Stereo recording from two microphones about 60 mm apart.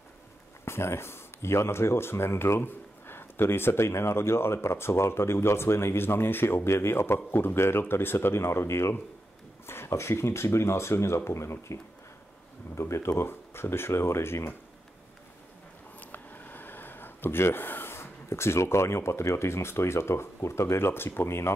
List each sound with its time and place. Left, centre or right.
0.7 s speech: left
16.0 s speech: left